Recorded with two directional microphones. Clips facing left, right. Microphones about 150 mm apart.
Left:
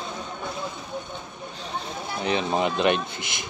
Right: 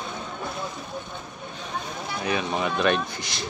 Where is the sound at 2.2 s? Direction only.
25° left (ahead or behind).